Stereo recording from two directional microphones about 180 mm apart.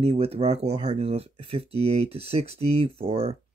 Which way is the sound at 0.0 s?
35° right (ahead or behind).